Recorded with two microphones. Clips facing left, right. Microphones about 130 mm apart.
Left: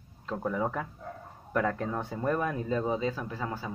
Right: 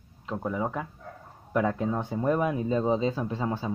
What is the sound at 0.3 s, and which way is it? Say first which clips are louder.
Speech: right 1 dB; 10° right (ahead or behind).